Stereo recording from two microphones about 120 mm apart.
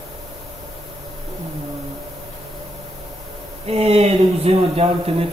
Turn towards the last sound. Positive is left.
turn(degrees=-55)  # may be behind; listen again after turning